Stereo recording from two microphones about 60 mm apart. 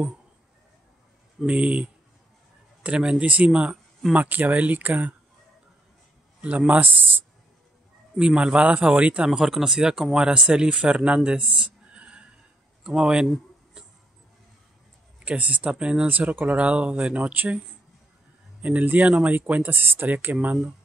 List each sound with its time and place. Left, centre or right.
1.4 s speech: centre
6.4 s speech: right
8.2 s speech: centre
9.3 s speech: centre
11.2 s a sound: centre
12.8 s speech: centre
13.8 s vehicle: centre
15.2 s speech: right
16.1 s speech: right
18.6 s speech: right